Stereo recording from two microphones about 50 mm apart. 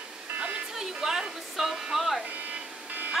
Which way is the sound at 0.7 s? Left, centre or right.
Centre.